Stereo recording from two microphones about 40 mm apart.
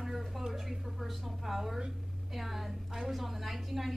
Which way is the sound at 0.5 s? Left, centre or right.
Centre.